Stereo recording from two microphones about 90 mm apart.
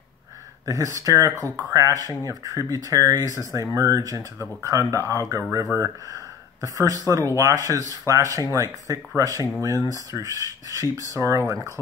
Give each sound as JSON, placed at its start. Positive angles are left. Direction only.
{"t": 0.7, "sound": "speech", "side_deg": -40}